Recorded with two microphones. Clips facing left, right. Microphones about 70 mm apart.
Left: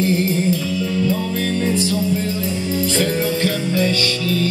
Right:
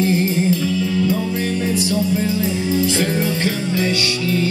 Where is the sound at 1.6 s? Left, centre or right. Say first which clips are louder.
Left 2 dB; centre.